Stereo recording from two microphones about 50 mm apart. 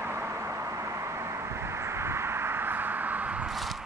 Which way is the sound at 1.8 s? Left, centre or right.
Right.